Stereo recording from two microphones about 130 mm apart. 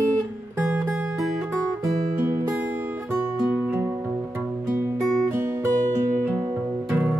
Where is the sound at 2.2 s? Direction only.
20° right (ahead or behind).